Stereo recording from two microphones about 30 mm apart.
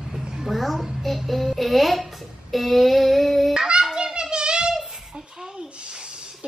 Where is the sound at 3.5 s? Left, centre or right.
Right.